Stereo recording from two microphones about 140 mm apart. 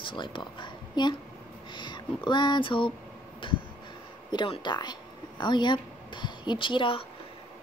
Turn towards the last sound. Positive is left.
turn(degrees=40)  # may be behind; listen again after turning